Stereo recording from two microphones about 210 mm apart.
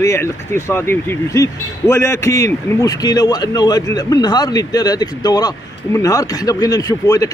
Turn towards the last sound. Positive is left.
turn(degrees=15)  # may be behind; listen again after turning